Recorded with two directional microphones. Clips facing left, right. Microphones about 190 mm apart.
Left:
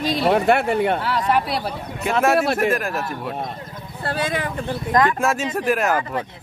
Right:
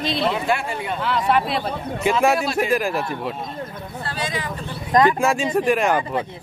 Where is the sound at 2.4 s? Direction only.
60° left (ahead or behind).